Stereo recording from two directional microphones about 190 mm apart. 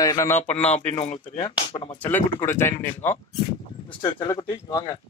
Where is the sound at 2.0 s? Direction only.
10° left (ahead or behind).